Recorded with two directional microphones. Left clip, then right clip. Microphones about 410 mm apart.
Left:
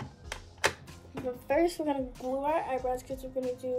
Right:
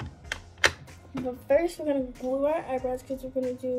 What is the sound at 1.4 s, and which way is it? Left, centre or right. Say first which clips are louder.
A woman's voice: right 4 dB; centre.